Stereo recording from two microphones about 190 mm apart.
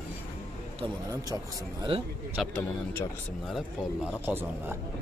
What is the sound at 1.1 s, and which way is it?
Speech, 15° right (ahead or behind).